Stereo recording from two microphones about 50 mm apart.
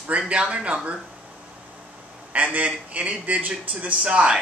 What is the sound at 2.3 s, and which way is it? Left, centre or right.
A man's voice, right.